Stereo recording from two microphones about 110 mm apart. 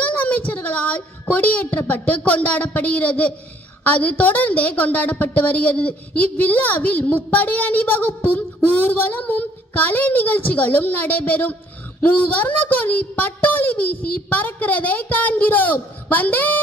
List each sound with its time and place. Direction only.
0.0 s child singing: 15° left (ahead or behind)
0.5 s a woman's voice: 15° left (ahead or behind)